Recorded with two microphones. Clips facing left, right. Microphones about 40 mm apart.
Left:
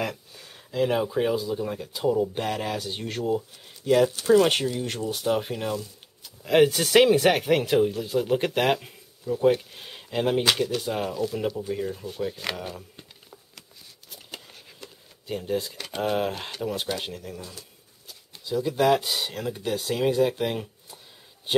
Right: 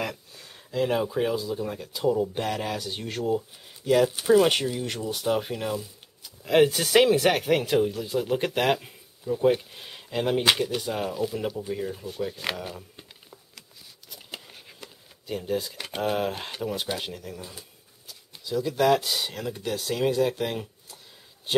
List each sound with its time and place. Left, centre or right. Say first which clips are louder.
0.0 s speech: left 2 dB; centre
10.4 s speech: even; centre
10.8 s speech: left 1 dB; centre
14.1 s a sound: right 1 dB; centre
15.2 s speech: left 1 dB; centre
17.4 s speech: even; centre
18.0 s speech: even; centre